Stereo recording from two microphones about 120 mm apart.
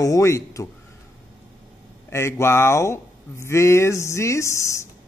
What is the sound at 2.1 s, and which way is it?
Speech, 20° left (ahead or behind).